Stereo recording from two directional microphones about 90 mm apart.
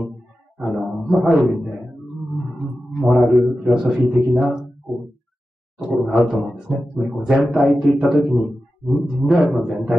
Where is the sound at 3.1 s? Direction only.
5° right (ahead or behind).